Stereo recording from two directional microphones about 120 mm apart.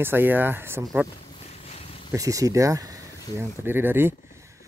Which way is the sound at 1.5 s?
60° left (ahead or behind).